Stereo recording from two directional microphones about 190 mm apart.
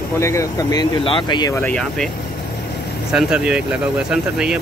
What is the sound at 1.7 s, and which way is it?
Speech, centre (ahead or behind).